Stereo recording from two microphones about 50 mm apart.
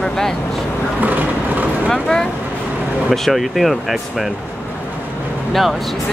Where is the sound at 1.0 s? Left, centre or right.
Right.